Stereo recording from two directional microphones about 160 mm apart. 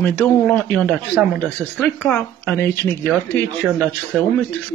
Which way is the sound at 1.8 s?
10° left (ahead or behind).